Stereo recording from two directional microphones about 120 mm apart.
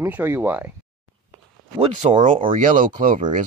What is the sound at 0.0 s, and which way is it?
Speech, 15° right (ahead or behind).